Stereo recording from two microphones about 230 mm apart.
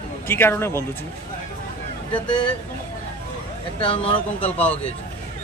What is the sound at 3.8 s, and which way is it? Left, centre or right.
Speech, left.